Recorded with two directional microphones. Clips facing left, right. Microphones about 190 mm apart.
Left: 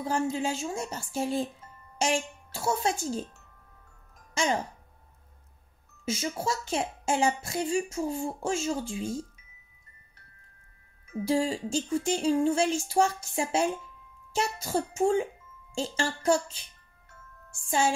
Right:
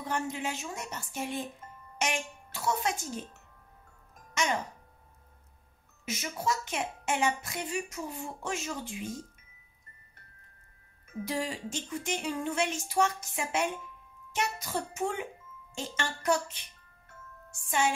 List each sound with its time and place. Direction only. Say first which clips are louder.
0.0 s a woman's voice: left 5 dB; 30° left (ahead or behind)
4.3 s music: left 3 dB; 30° left (ahead or behind)
6.0 s a woman's voice: left 3 dB; 30° left (ahead or behind)
11.2 s a woman's voice: left 8 dB; 30° left (ahead or behind)
17.6 s music: left 3 dB; 30° left (ahead or behind)